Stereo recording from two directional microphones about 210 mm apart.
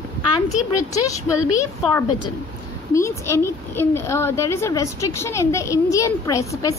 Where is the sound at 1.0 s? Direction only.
15° left (ahead or behind).